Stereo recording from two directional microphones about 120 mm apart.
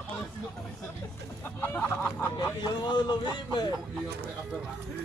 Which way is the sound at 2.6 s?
40° left (ahead or behind).